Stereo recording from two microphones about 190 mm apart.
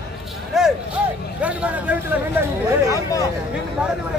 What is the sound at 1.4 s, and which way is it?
Vehicle, 5° right (ahead or behind).